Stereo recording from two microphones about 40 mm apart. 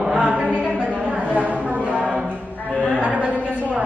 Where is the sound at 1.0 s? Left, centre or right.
Right.